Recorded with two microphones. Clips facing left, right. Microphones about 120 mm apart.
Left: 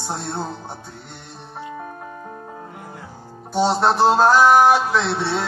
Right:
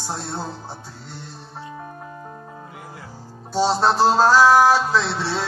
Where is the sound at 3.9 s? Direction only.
20° left (ahead or behind).